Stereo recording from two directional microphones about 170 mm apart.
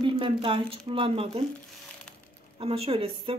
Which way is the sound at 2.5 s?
35° right (ahead or behind).